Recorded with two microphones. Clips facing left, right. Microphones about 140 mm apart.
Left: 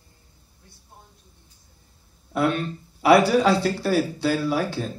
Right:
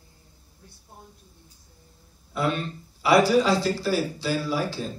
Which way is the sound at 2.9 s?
60° left (ahead or behind).